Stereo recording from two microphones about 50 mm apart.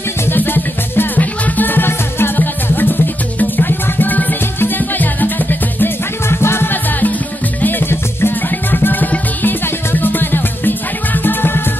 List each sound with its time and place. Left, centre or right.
0.3 s music: left
6.2 s music: left
7.6 s music: left